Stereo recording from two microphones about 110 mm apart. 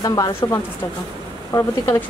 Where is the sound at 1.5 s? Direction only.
25° left (ahead or behind).